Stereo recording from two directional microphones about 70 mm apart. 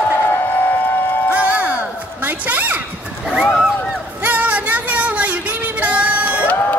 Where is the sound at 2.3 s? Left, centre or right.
Right.